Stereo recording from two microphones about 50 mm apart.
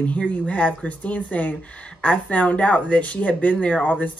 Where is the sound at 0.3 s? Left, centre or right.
Left.